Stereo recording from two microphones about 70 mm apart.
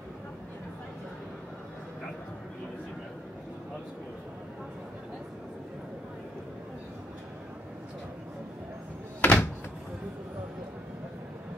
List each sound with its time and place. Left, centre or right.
9.2 s door: left